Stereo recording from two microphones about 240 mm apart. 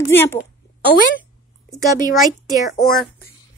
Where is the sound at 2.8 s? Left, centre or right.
Centre.